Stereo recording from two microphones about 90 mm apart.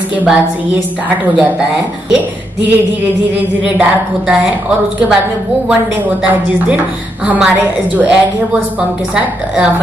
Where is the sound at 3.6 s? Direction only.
10° right (ahead or behind).